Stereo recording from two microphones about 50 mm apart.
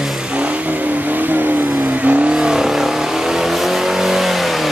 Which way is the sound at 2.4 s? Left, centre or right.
Centre.